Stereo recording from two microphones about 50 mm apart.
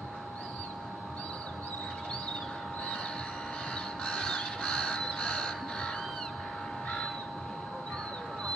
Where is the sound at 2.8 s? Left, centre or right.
Centre.